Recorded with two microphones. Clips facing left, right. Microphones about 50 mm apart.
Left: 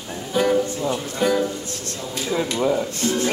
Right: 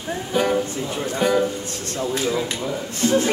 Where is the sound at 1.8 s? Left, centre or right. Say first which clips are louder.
Right 8 dB; right.